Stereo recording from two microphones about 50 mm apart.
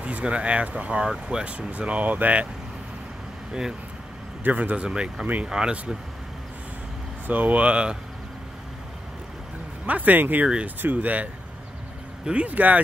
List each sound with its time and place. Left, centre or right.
0.0 s speech: right
4.4 s a man's voice: right
4.8 s speech: centre
5.2 s speech: right
5.5 s speech: centre
7.2 s speech: right
9.8 s speech: right
10.4 s speech: right
10.8 s speech: right
12.3 s speech: right